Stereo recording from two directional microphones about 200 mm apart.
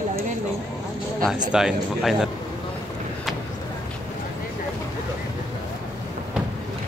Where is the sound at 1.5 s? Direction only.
5° right (ahead or behind).